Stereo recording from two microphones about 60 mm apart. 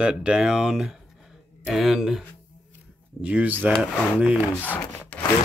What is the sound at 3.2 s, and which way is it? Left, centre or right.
Speech, right.